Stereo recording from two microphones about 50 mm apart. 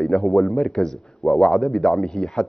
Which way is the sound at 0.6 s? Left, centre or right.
Centre.